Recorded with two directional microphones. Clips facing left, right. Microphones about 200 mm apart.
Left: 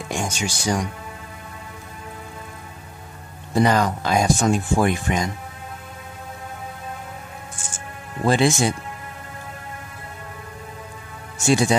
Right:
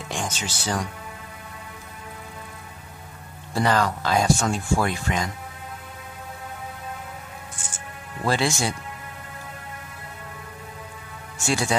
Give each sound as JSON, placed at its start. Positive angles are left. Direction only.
{"t": 0.1, "sound": "speech", "side_deg": 10}
{"t": 3.5, "sound": "speech", "side_deg": 15}
{"t": 7.5, "sound": "music", "side_deg": 25}
{"t": 11.4, "sound": "speech", "side_deg": 20}